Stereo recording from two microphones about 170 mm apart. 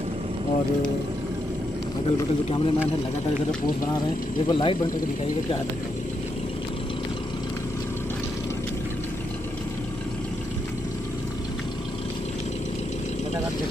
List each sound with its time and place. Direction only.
2.0 s speech: 30° left (ahead or behind)
4.5 s speech: 30° left (ahead or behind)